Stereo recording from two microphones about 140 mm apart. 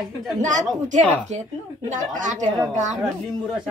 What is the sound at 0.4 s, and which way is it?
Speech, 60° right (ahead or behind).